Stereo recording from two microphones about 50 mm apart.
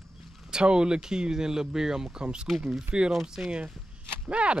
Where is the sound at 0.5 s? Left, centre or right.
Centre.